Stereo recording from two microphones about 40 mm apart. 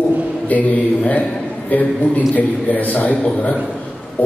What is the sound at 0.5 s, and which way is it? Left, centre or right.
A man's voice, left.